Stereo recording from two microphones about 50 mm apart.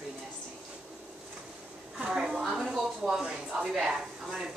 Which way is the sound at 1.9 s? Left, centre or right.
Centre.